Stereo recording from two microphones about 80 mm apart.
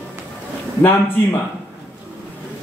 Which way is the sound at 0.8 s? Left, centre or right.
Left.